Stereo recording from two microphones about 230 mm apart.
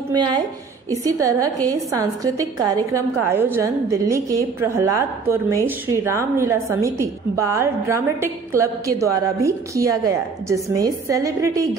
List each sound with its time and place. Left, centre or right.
0.1 s a woman's voice: centre